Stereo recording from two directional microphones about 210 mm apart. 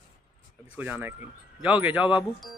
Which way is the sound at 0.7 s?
10° right (ahead or behind).